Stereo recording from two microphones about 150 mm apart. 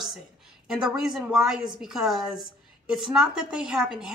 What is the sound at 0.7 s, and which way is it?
A woman's voice, 5° right (ahead or behind).